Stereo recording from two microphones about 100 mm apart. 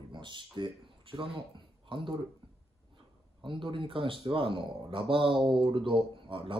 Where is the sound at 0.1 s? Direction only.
50° right (ahead or behind).